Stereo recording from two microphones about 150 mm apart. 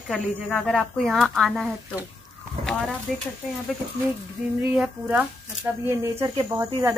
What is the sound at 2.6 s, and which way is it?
Chicken, centre (ahead or behind).